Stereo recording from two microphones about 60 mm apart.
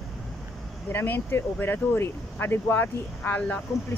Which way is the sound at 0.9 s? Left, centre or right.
Left.